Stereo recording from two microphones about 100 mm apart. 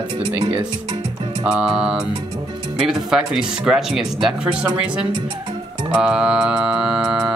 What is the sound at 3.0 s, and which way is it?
Speech, 5° right (ahead or behind).